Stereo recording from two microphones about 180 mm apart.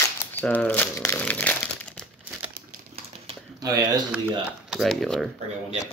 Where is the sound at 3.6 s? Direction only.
20° right (ahead or behind).